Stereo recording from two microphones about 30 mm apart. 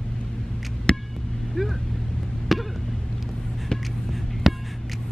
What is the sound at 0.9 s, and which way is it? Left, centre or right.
Vehicle, left.